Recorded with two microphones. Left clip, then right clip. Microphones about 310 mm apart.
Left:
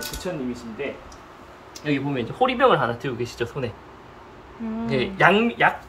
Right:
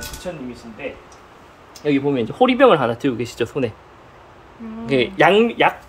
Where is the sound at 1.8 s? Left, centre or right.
Right.